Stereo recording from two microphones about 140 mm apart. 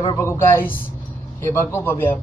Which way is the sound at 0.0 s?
30° left (ahead or behind).